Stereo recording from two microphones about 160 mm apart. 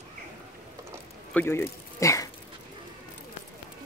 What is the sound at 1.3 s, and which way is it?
Speech, 15° left (ahead or behind).